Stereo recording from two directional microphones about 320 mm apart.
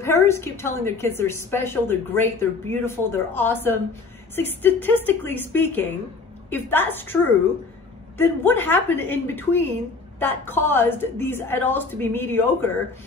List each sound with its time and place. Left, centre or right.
0.0 s a woman's voice: centre
8.2 s a woman's voice: centre